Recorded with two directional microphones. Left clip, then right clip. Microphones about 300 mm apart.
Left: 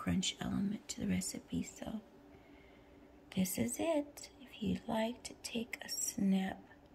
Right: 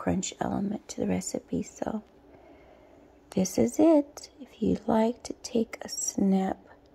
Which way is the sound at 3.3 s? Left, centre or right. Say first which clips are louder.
Right 13 dB; centre.